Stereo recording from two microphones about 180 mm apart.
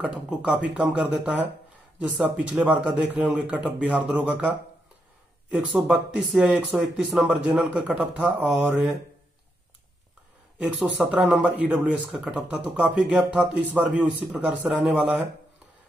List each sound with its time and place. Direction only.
0.0 s speech: 5° right (ahead or behind)
11.0 s speech: 5° right (ahead or behind)